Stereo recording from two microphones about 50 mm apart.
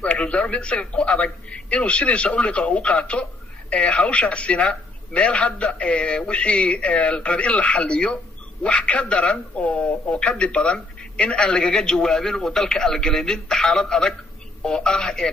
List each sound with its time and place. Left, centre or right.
0.0 s a man's voice: left